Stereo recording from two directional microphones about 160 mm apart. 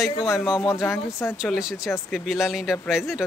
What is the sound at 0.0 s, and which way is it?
Speech, centre (ahead or behind).